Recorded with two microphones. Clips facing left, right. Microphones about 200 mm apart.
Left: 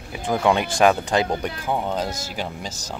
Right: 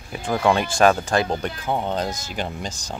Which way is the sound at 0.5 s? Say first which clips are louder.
Right 1 dB; 15° left (ahead or behind).